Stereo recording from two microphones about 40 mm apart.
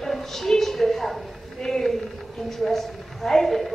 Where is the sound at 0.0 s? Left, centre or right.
Centre.